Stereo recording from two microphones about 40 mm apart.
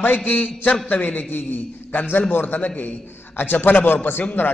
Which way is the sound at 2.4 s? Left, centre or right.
Left.